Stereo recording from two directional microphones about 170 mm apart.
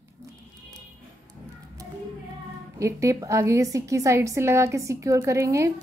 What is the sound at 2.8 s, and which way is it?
A woman's voice, 20° right (ahead or behind).